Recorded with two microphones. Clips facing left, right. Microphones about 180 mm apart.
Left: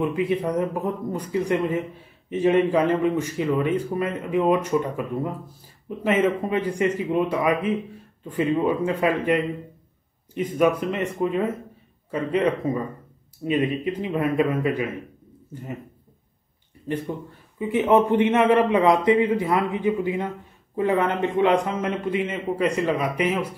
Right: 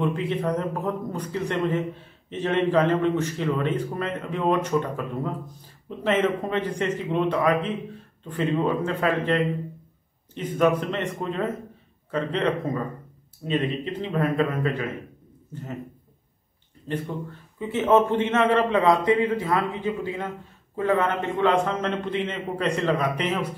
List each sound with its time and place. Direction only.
0.0 s a man's voice: 10° left (ahead or behind)
16.9 s a man's voice: 10° left (ahead or behind)